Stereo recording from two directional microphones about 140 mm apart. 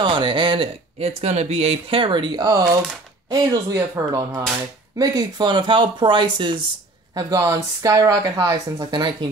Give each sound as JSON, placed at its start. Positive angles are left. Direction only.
{"t": 0.0, "sound": "speech", "side_deg": -35}